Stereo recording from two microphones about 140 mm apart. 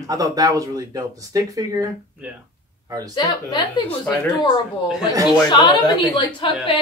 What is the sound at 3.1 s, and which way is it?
Speech, 30° left (ahead or behind).